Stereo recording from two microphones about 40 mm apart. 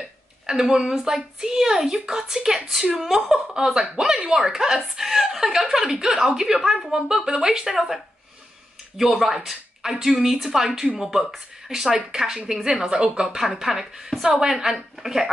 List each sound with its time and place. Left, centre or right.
0.5 s a woman's voice: centre
3.6 s speech: right
4.4 s a woman's voice: centre
7.2 s a woman's voice: centre